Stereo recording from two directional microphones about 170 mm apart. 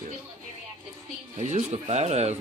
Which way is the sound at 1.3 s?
40° right (ahead or behind).